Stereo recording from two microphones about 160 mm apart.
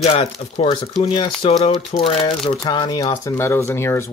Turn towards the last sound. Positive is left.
turn(degrees=15)  # may be behind; listen again after turning